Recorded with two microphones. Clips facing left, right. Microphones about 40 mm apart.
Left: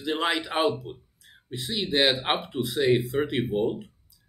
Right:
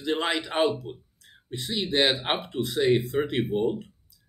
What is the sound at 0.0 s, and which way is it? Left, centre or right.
Speech, centre.